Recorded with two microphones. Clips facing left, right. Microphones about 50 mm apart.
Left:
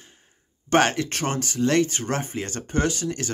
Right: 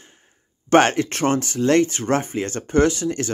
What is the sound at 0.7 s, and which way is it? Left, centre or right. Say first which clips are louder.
Speech: right 5 dB; right.